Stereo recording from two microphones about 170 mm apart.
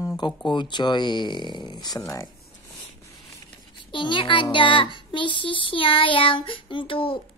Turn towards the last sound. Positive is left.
turn(degrees=30)  # may be behind; listen again after turning